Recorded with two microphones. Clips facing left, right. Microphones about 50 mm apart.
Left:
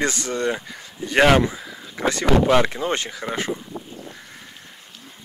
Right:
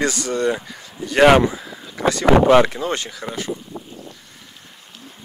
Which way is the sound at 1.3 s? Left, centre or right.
Centre.